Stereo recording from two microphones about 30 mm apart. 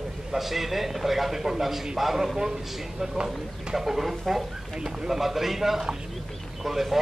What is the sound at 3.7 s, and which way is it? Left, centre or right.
Speech, centre.